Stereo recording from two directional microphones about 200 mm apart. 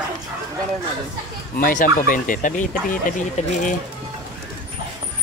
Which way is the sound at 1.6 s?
45° left (ahead or behind).